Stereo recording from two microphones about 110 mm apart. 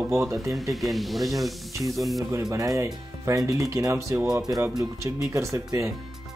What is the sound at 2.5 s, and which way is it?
Speech, 35° right (ahead or behind).